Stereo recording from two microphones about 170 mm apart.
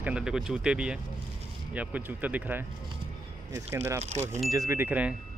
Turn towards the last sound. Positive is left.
turn(degrees=-10)  # may be behind; listen again after turning